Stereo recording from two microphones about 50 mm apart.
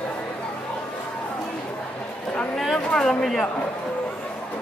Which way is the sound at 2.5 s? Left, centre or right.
Centre.